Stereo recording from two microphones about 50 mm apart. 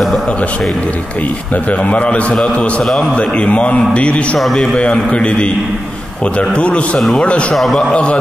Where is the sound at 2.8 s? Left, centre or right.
Centre.